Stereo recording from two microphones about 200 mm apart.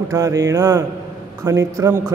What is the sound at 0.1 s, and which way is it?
A man's voice, 15° right (ahead or behind).